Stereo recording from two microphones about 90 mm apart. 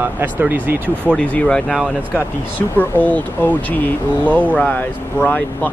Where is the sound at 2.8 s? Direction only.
20° left (ahead or behind).